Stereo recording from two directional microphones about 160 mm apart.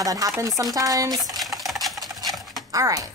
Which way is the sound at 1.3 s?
Centre (ahead or behind).